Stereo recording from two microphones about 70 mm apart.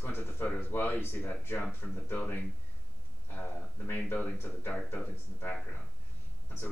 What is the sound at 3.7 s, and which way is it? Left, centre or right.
Speech, left.